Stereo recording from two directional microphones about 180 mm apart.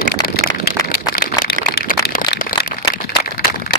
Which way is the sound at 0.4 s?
55° left (ahead or behind).